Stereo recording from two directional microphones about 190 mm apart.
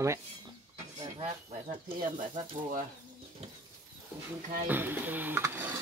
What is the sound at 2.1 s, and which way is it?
Speech, 40° right (ahead or behind).